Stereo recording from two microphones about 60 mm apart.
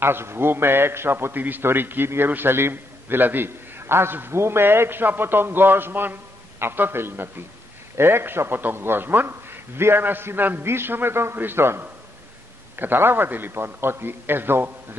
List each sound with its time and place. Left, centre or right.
0.0 s a man's voice: right